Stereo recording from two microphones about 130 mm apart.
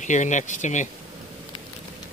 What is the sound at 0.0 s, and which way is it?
Speech, 70° left (ahead or behind).